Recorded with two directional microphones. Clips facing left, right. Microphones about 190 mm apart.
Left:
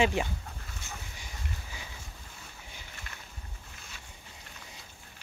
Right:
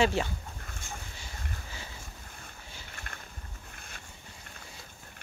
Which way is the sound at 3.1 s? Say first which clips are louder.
Right 2 dB; 50° right (ahead or behind).